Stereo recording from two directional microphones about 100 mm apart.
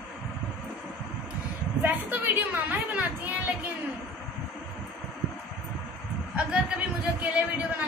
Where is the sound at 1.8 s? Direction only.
20° right (ahead or behind).